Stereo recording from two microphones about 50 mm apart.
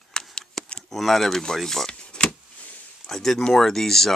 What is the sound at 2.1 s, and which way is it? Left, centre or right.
Power windows, left.